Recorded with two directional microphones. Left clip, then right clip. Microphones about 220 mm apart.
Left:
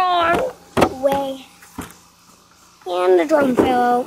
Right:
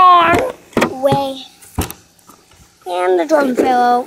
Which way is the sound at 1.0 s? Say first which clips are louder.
Right 4 dB; 30° right (ahead or behind).